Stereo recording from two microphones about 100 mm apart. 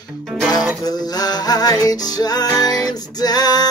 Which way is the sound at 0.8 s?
40° left (ahead or behind).